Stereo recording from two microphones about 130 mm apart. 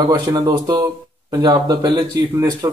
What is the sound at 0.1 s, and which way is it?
Speech, 30° right (ahead or behind).